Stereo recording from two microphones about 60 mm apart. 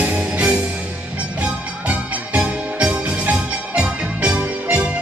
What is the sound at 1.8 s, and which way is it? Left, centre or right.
Music, right.